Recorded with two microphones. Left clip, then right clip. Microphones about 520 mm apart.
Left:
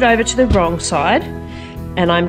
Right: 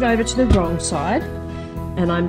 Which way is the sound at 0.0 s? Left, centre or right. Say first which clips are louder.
Left 5 dB; centre.